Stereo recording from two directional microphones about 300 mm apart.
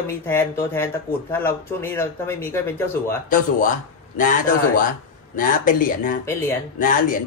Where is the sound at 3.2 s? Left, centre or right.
Left.